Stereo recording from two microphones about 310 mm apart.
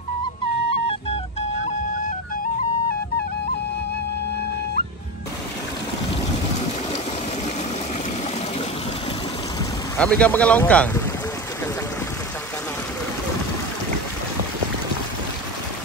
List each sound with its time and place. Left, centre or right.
0.7 s music: centre
9.9 s speech: centre